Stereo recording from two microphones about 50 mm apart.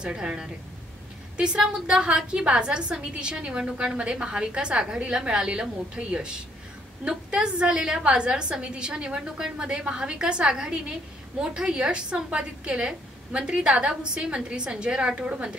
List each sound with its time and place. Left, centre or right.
0.0 s a woman's voice: centre